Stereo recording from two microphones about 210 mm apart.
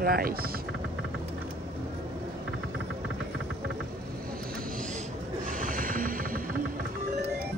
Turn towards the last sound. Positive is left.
turn(degrees=-40)  # may be behind; listen again after turning